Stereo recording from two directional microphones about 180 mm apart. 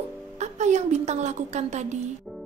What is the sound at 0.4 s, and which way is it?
A woman's voice, 40° right (ahead or behind).